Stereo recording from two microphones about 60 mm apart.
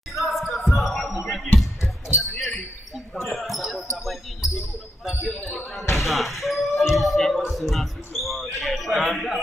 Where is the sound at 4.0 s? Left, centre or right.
Centre.